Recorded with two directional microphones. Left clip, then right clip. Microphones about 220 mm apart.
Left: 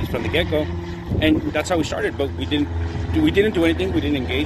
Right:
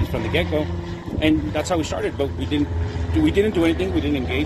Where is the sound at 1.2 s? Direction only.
15° right (ahead or behind).